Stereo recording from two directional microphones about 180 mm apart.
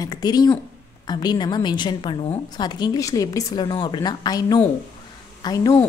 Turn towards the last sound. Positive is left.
turn(degrees=20)  # may be behind; listen again after turning